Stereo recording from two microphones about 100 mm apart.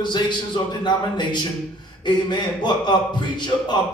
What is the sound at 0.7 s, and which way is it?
Speech, 50° left (ahead or behind).